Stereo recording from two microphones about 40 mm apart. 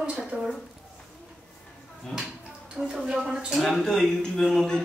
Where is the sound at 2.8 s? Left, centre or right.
Centre.